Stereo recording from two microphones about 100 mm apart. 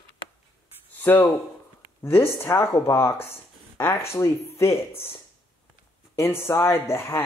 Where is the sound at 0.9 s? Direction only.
20° left (ahead or behind).